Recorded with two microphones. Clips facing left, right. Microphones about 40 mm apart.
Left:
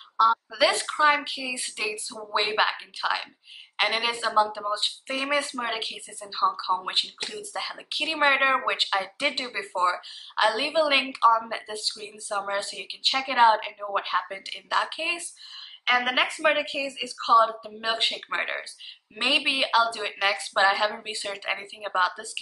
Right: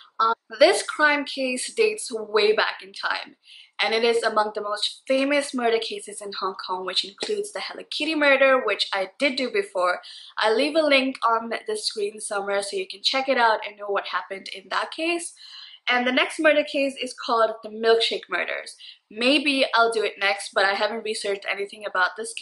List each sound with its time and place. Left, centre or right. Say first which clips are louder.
0.6 s speech: right 9 dB; centre